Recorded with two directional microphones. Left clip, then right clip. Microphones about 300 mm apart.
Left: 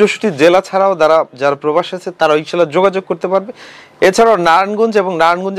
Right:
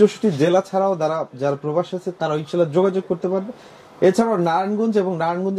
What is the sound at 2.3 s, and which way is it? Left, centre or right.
Speech, centre.